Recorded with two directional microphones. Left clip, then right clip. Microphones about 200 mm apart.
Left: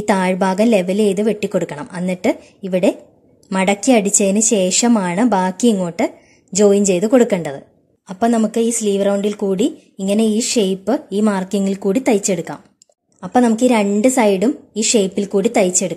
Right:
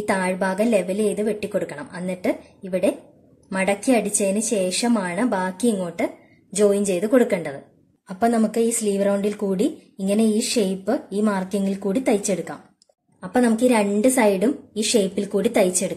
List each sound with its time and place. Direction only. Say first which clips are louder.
0.0 s a woman's voice: left 6 dB; 40° left (ahead or behind)